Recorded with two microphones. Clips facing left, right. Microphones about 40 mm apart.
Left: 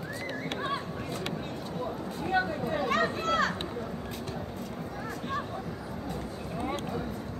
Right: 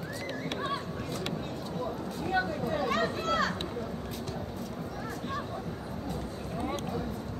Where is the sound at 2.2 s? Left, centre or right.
Centre.